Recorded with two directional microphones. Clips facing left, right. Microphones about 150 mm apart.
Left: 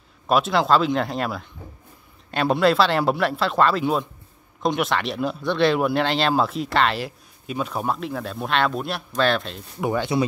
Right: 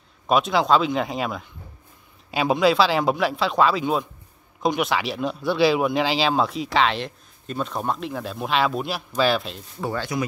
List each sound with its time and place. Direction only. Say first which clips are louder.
0.3 s speech: even; centre (ahead or behind)
2.6 s speech: even; centre (ahead or behind)
9.8 s speech: left 4 dB; 15° left (ahead or behind)